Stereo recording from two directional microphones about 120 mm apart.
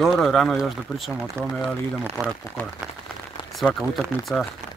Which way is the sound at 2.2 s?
25° right (ahead or behind).